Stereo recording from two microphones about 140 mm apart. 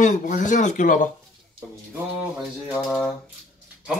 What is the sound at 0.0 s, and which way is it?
Speech, 65° left (ahead or behind).